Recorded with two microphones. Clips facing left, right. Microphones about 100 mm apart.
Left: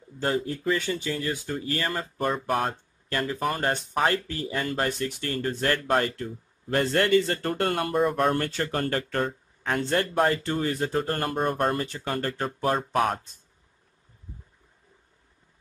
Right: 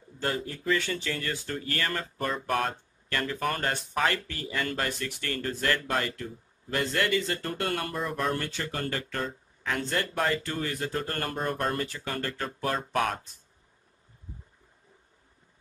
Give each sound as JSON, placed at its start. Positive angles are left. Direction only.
{"t": 0.2, "sound": "speech", "side_deg": 20}
{"t": 5.9, "sound": "speech", "side_deg": 40}
{"t": 7.9, "sound": "speech", "side_deg": 50}
{"t": 9.8, "sound": "speech", "side_deg": 35}
{"t": 10.3, "sound": "speech", "side_deg": 25}
{"t": 11.3, "sound": "speech", "side_deg": 45}
{"t": 11.7, "sound": "speech", "side_deg": 30}